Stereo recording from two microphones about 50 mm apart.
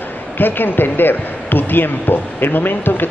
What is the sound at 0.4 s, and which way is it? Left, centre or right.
Speech, left.